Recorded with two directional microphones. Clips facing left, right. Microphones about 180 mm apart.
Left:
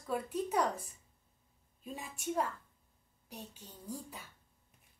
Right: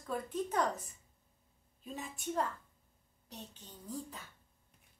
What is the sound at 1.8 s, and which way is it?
A woman's voice, 10° left (ahead or behind).